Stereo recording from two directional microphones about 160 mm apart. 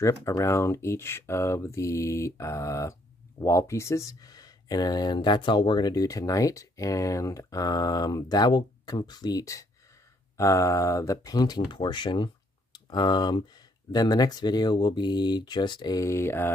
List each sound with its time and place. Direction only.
0.0 s speech: 20° left (ahead or behind)